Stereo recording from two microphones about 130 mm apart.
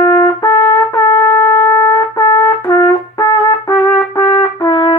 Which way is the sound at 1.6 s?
25° left (ahead or behind).